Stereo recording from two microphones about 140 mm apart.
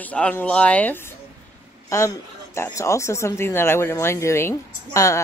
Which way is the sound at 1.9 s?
20° left (ahead or behind).